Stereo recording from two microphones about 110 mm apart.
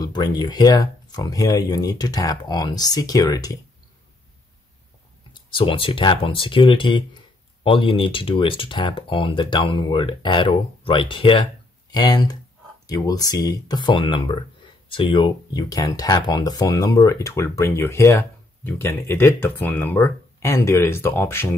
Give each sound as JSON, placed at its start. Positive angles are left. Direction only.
{"t": 0.0, "sound": "speech", "side_deg": 40}
{"t": 5.3, "sound": "speech", "side_deg": 50}
{"t": 11.9, "sound": "speech", "side_deg": 40}
{"t": 15.7, "sound": "speech", "side_deg": 35}